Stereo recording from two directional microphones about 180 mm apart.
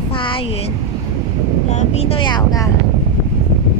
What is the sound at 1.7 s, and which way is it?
Child singing, 40° left (ahead or behind).